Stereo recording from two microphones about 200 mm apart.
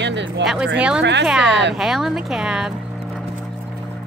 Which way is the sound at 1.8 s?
Centre (ahead or behind).